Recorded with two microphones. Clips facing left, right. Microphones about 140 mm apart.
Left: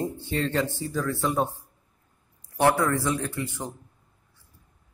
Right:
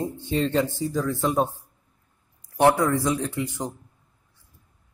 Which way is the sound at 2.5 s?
15° right (ahead or behind).